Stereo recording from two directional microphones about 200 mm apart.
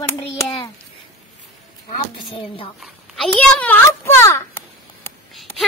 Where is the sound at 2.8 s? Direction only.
5° left (ahead or behind).